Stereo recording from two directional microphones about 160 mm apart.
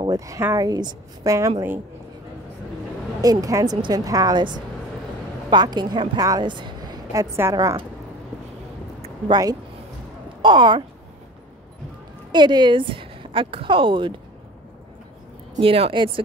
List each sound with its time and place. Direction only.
0.0 s speech: 20° right (ahead or behind)
3.2 s a woman's voice: 20° right (ahead or behind)
9.3 s speech: 25° right (ahead or behind)
12.3 s a woman's voice: 30° right (ahead or behind)
15.6 s speech: 35° right (ahead or behind)